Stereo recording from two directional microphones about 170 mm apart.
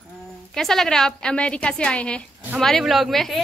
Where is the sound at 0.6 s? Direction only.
Centre (ahead or behind).